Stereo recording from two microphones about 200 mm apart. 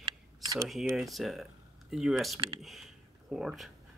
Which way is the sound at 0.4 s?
15° right (ahead or behind).